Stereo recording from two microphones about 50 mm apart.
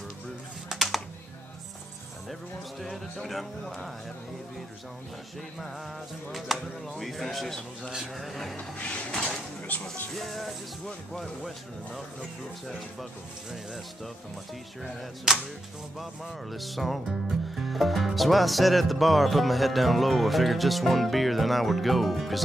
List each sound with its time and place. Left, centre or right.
0.7 s typing: centre
2.8 s speech: centre
6.3 s speech: centre
7.9 s a man's voice: centre
8.3 s speech: centre
8.5 s music: left
9.1 s a sound: centre
10.1 s speech: centre
14.8 s speech: centre